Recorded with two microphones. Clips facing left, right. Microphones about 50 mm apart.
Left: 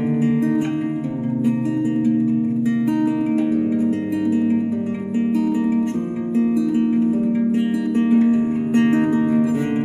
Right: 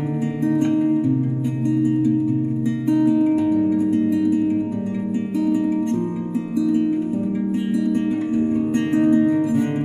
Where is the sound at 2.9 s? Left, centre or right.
Centre.